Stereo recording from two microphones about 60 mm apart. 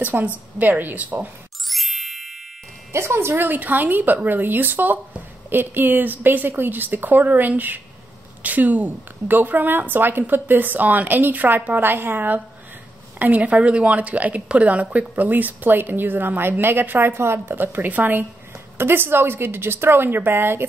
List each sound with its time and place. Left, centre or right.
0.1 s a woman's voice: right
1.7 s ding: centre
2.9 s speech: right
3.4 s a woman's voice: right
13.4 s a woman's voice: right